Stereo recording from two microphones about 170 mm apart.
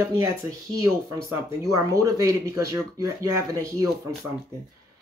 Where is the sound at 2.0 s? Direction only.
20° right (ahead or behind).